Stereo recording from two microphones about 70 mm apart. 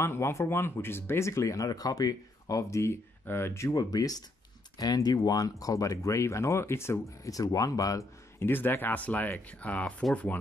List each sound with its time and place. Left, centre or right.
0.0 s speech: left
3.3 s speech: left
7.2 s speech: left
8.4 s speech: left